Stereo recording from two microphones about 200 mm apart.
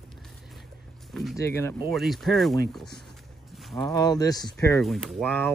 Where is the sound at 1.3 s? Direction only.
15° left (ahead or behind).